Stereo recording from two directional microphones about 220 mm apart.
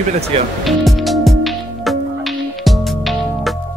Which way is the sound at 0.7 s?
Centre (ahead or behind).